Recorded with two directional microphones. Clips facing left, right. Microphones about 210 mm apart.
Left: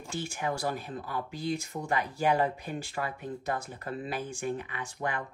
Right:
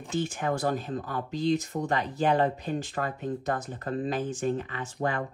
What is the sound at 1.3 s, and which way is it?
Speech, 10° left (ahead or behind).